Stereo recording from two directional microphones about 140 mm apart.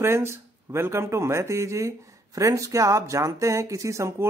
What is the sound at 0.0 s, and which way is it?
Speech, 15° right (ahead or behind).